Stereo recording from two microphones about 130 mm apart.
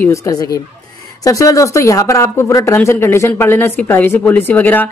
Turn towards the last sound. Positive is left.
turn(degrees=15)  # may be behind; listen again after turning